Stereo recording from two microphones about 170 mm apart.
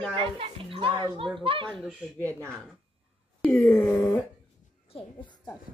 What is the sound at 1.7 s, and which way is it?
Speech, centre (ahead or behind).